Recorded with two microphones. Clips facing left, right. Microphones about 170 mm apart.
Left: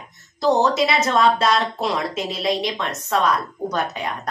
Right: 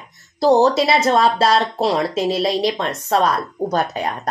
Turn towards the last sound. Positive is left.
turn(degrees=-35)  # may be behind; listen again after turning